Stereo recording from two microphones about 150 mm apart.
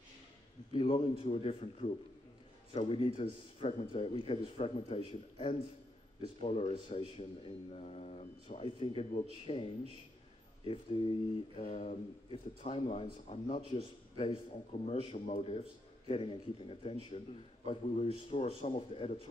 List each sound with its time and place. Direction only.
0.7 s speech: 35° left (ahead or behind)
11.7 s a man's voice: 45° left (ahead or behind)